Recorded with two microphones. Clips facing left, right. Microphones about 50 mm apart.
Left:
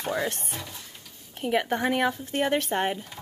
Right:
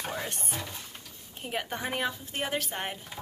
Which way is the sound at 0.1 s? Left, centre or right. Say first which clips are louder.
Left 7 dB; left.